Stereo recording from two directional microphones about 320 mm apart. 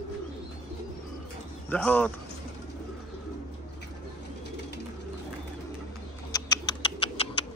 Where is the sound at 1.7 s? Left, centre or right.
Centre.